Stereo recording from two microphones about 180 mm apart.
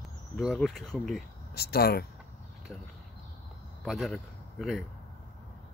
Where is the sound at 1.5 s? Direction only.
60° left (ahead or behind).